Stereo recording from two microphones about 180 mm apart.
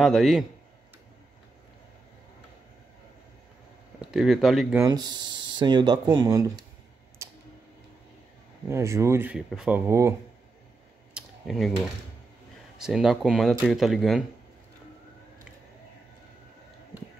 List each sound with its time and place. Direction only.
0.0 s speech: centre (ahead or behind)
4.0 s speech: centre (ahead or behind)
4.7 s speech: 20° right (ahead or behind)
7.2 s tick-tock: 15° right (ahead or behind)
8.6 s speech: 15° right (ahead or behind)
11.1 s computer keyboard: centre (ahead or behind)
12.8 s speech: centre (ahead or behind)